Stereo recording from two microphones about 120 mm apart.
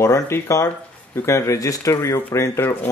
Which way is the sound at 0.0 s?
25° left (ahead or behind).